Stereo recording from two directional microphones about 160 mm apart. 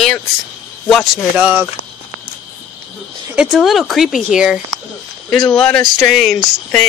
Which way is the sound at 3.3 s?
5° right (ahead or behind).